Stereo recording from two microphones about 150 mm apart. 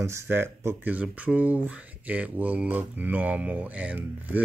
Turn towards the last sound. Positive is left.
turn(degrees=-10)  # may be behind; listen again after turning